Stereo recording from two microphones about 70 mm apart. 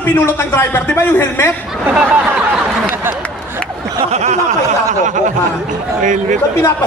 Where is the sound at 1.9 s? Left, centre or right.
Centre.